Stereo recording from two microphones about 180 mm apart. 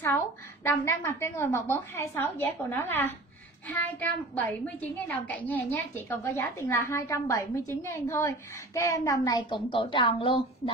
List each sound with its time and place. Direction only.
0.7 s a woman's voice: 15° left (ahead or behind); by 10.7 s 30° left (ahead or behind)